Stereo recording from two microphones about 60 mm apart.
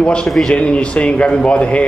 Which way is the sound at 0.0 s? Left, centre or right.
Centre.